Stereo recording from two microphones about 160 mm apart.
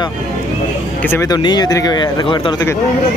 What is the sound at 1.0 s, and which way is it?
Speech, 20° left (ahead or behind).